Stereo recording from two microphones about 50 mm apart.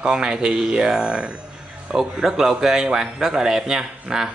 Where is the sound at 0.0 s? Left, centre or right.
Centre.